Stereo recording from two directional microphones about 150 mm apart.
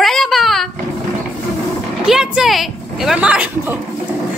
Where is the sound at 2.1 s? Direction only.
5° right (ahead or behind).